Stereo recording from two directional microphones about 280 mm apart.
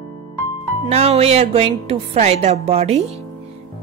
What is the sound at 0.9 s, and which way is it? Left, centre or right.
Speech, right.